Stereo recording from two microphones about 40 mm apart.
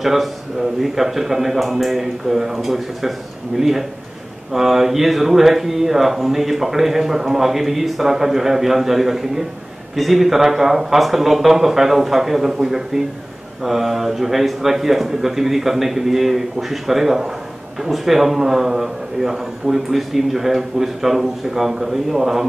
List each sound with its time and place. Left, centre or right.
0.0 s a man's voice: centre